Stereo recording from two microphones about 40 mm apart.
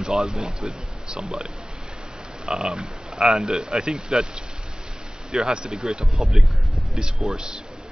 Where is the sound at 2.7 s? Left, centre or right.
Right.